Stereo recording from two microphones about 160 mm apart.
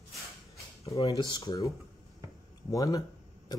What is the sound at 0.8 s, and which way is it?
Speech, 20° left (ahead or behind).